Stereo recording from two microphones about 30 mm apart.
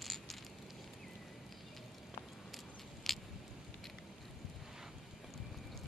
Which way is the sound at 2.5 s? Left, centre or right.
Centre.